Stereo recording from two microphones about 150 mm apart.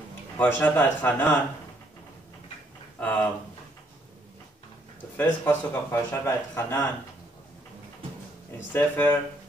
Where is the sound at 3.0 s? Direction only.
10° left (ahead or behind).